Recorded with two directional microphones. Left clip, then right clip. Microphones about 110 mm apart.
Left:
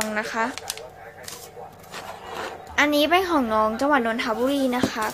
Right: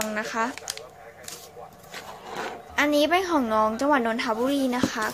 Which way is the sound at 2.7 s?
15° right (ahead or behind).